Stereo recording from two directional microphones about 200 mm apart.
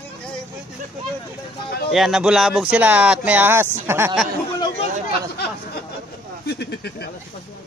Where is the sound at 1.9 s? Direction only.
Centre (ahead or behind).